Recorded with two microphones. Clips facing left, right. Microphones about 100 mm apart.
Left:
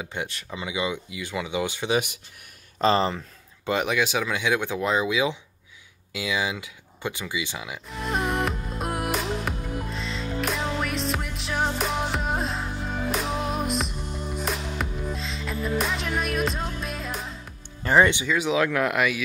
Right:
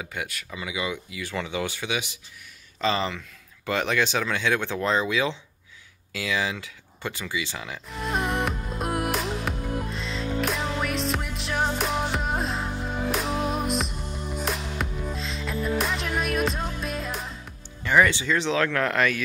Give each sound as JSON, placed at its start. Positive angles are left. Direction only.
{"t": 0.0, "sound": "speech", "side_deg": 25}
{"t": 2.8, "sound": "speech", "side_deg": 35}
{"t": 3.6, "sound": "speech", "side_deg": 15}
{"t": 7.9, "sound": "music", "side_deg": 0}
{"t": 17.8, "sound": "music", "side_deg": 30}
{"t": 18.2, "sound": "speech", "side_deg": 10}